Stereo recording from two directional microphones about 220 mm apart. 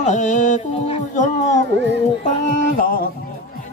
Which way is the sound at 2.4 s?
35° left (ahead or behind).